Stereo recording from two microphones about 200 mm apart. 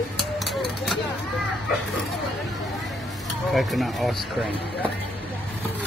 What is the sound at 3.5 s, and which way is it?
Speech, centre (ahead or behind).